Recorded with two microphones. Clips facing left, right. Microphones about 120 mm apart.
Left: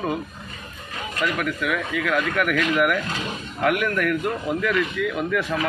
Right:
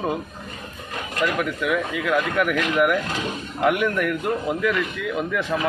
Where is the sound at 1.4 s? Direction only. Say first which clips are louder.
Right 2 dB; 20° right (ahead or behind).